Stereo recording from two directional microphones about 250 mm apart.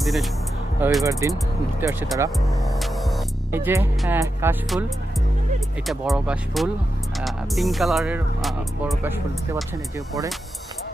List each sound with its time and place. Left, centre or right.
0.0 s speech: centre
5.9 s speech: centre